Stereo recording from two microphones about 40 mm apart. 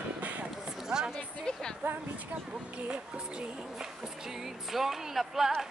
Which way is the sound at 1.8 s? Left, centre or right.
Right.